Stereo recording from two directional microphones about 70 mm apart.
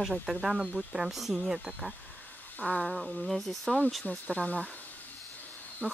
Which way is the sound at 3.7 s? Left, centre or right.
Centre.